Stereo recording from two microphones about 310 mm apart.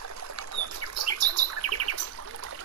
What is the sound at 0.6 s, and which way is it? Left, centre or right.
Bird, right.